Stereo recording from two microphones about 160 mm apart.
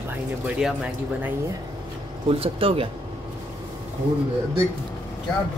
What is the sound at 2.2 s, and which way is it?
Speech, 35° right (ahead or behind).